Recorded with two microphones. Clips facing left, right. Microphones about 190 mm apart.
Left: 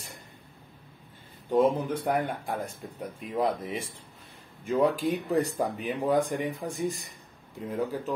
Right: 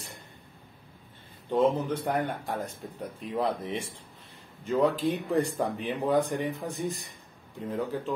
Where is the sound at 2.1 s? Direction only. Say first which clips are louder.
Left 1 dB; 10° left (ahead or behind).